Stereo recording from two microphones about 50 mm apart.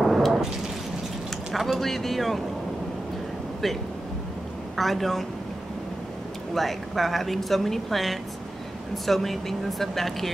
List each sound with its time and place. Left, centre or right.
0.0 s thunder: centre
1.5 s speech: centre
4.7 s speech: centre
6.5 s speech: centre